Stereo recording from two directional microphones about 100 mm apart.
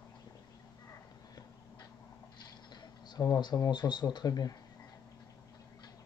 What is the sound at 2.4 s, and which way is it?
Speech, 45° left (ahead or behind).